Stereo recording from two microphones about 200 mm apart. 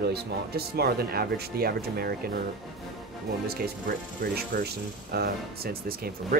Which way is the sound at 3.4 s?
50° right (ahead or behind).